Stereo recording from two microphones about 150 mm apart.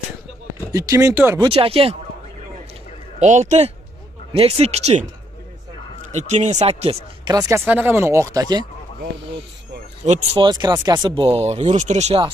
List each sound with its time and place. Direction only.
0.7 s speech: 20° right (ahead or behind)
1.4 s speech: 40° right (ahead or behind)
3.2 s speech: 50° right (ahead or behind)
7.2 s speech: 25° right (ahead or behind)
7.6 s speech: 10° right (ahead or behind)
10.3 s speech: 30° right (ahead or behind); by 12.2 s 50° right (ahead or behind)